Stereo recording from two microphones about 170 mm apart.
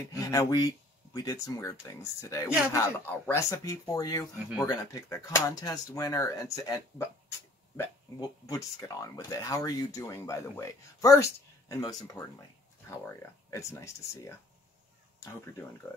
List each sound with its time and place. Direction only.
0.0 s speech: 20° left (ahead or behind)